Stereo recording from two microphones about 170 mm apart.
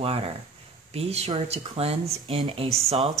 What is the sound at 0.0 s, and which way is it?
Speech, 35° right (ahead or behind).